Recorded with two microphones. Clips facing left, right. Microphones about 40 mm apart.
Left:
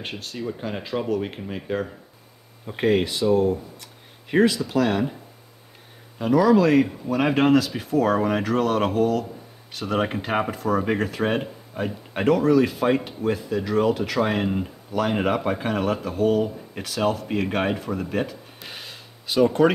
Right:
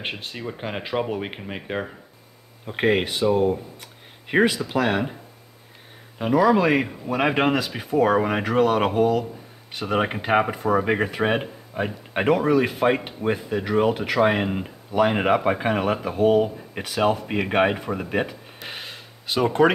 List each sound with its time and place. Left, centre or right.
0.0 s speech: right
6.1 s speech: centre